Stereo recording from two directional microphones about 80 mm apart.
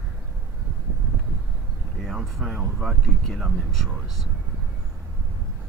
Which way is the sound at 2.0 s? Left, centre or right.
Centre.